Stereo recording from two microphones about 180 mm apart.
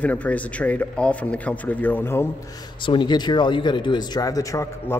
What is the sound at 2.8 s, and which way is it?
Speech, 25° left (ahead or behind).